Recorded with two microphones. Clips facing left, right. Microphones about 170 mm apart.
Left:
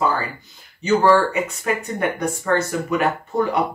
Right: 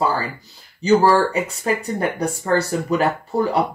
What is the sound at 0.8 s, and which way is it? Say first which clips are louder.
Speech: right 1 dB; 35° right (ahead or behind).